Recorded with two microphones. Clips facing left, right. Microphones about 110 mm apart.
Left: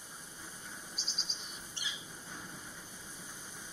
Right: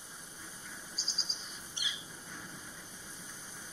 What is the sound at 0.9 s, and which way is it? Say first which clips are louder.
Bird: even; 35° right (ahead or behind).